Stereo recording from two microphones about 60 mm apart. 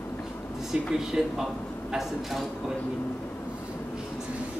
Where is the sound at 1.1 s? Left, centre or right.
Centre.